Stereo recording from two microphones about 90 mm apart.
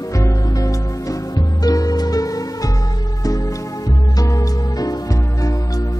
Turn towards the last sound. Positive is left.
turn(degrees=40)  # may be behind; listen again after turning